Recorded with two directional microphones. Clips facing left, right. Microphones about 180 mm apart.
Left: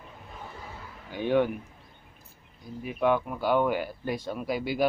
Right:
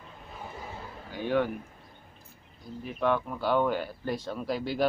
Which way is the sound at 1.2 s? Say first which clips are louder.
Left 3 dB; 20° left (ahead or behind).